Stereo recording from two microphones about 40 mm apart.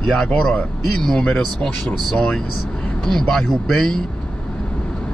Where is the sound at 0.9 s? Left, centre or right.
Centre.